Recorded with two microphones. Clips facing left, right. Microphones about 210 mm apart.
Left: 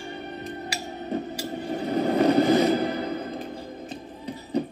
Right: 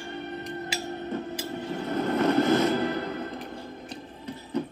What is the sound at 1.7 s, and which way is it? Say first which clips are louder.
Vehicle: left 4 dB; 40° left (ahead or behind).